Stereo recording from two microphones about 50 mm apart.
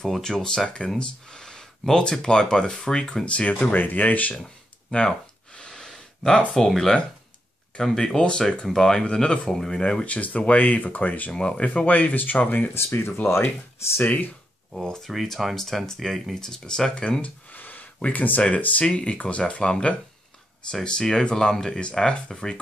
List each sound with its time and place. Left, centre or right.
0.0 s speech: centre; by 4.4 s left
4.9 s gasp: centre
8.0 s speech: centre
10.0 s speech: left
11.3 s speech: centre; by 12.7 s left
12.7 s speech: left
14.7 s speech: centre
17.5 s a sound: left
18.1 s speech: left; by 22.6 s centre